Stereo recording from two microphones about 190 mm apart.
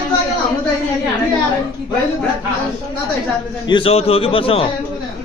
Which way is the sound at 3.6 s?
30° left (ahead or behind).